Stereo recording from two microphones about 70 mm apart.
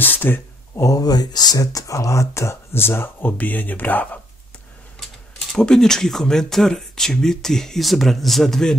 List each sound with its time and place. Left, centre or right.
0.0 s speech: left
0.7 s speech: left
5.5 s speech: centre